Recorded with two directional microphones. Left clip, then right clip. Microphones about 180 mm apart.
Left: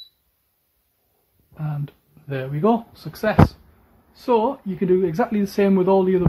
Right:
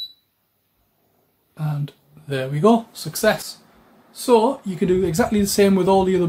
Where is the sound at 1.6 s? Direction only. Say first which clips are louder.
Right 3 dB; 45° left (ahead or behind).